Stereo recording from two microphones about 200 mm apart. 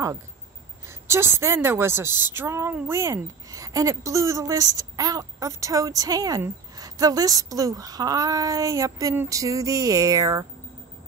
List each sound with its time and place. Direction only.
0.8 s a woman's voice: 15° right (ahead or behind)